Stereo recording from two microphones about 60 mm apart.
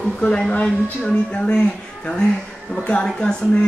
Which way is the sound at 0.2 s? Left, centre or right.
Centre.